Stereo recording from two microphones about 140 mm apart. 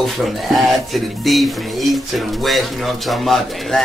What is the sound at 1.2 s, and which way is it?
Speech, centre (ahead or behind).